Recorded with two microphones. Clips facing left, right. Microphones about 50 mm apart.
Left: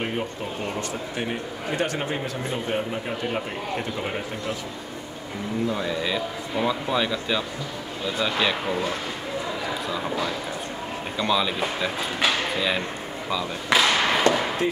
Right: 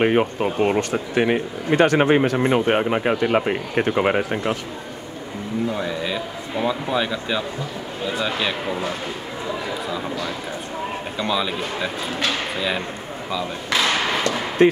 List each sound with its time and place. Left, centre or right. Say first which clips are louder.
0.0 s speech: right 10 dB; right
1.1 s speech: right 13 dB; right
5.7 s speech: right 1 dB; centre
11.1 s speech: left 1 dB; centre
13.7 s thump: left 1 dB; centre
14.3 s a sound: left 3 dB; left